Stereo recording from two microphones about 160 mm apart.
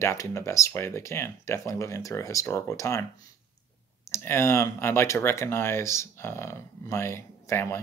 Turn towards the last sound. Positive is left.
turn(degrees=15)  # may be behind; listen again after turning